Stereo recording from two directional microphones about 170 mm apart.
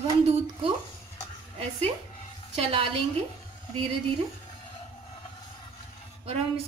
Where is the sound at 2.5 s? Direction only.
35° right (ahead or behind).